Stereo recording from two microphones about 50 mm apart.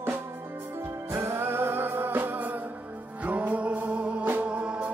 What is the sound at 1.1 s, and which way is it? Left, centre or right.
Music, right.